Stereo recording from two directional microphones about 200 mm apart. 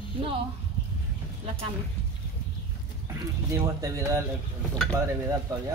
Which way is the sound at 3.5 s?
15° right (ahead or behind).